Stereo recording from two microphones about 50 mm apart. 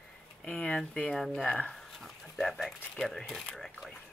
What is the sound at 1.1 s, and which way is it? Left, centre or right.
Speech, centre.